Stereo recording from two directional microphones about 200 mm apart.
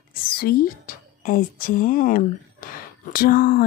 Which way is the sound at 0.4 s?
50° left (ahead or behind).